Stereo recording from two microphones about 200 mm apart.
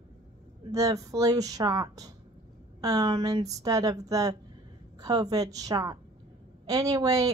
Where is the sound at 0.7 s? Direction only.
15° right (ahead or behind).